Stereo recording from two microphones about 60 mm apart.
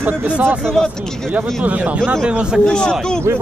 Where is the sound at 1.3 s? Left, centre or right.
Right.